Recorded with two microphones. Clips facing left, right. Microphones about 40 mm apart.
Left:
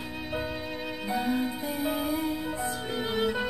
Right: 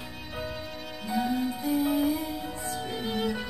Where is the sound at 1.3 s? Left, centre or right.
Left.